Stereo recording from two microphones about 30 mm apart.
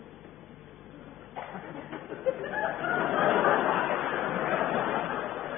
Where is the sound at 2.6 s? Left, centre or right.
Centre.